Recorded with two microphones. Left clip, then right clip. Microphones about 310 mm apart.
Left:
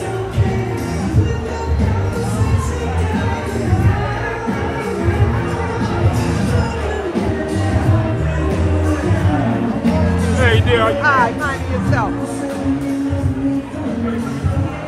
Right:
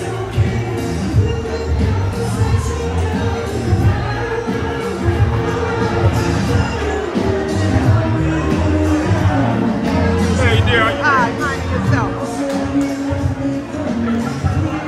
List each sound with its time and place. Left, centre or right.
10.4 s music: left
11.0 s music: centre